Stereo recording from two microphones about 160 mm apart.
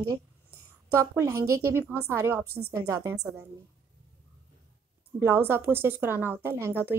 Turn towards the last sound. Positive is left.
turn(degrees=-15)  # may be behind; listen again after turning